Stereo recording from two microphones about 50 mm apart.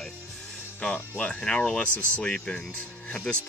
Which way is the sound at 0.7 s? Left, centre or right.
Left.